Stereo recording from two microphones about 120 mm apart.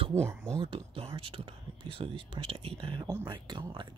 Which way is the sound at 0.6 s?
45° right (ahead or behind).